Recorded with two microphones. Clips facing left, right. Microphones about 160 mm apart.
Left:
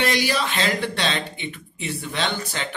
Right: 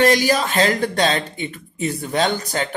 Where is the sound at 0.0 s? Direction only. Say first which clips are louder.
Right 6 dB; 45° right (ahead or behind).